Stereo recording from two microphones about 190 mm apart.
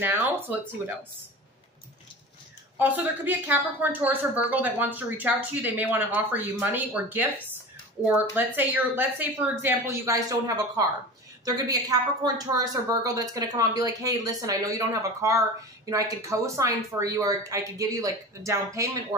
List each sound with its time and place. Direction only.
0.0 s a woman's voice: 10° right (ahead or behind)
2.8 s a woman's voice: 10° right (ahead or behind)